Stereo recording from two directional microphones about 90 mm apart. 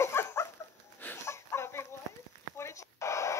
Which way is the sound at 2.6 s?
35° left (ahead or behind).